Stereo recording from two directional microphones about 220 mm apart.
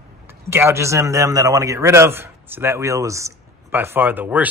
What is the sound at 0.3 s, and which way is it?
Speech, 10° right (ahead or behind).